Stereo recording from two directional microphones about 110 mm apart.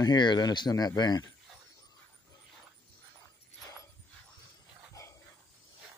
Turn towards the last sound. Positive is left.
turn(degrees=35)  # may be behind; listen again after turning